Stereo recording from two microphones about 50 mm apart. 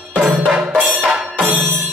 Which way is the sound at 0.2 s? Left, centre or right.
Centre.